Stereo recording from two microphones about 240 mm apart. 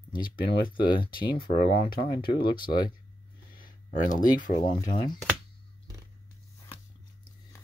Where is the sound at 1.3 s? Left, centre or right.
Left.